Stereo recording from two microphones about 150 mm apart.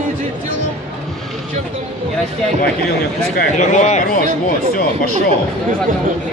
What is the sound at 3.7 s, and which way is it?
Speech, 50° left (ahead or behind).